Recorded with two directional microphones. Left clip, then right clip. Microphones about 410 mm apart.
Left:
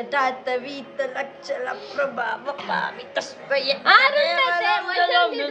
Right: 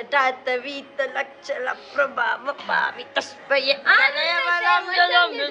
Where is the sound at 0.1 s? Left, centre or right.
Centre.